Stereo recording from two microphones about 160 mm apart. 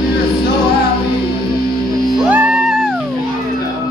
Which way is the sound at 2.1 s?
10° right (ahead or behind).